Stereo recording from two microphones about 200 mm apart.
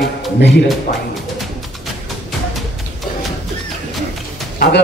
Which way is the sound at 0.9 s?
45° left (ahead or behind).